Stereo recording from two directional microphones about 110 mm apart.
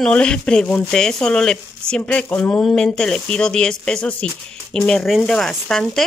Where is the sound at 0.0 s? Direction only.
10° left (ahead or behind).